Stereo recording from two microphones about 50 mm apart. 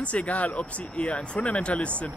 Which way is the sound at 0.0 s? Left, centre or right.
Left.